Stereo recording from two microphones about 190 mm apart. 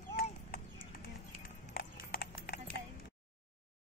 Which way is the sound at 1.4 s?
50° left (ahead or behind).